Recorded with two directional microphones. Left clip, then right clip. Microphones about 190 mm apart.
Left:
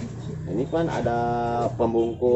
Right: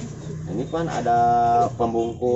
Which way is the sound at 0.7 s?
10° right (ahead or behind).